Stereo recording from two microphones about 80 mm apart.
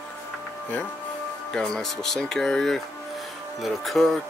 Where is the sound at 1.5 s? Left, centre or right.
Centre.